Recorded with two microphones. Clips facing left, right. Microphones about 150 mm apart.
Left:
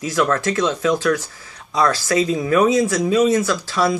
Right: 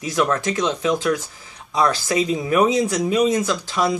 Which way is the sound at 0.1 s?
20° right (ahead or behind).